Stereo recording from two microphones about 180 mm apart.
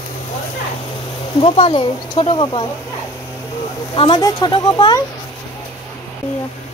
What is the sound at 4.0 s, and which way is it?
Speech, 25° left (ahead or behind).